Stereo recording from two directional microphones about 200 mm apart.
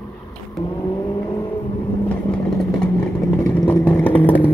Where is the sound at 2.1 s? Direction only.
5° left (ahead or behind).